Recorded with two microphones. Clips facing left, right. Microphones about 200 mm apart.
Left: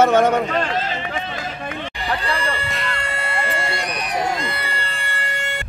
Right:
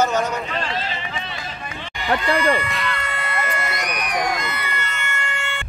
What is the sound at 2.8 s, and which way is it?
Crowd, 30° left (ahead or behind).